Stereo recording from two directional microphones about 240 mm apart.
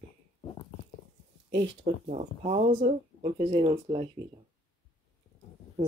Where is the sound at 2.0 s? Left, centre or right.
Right.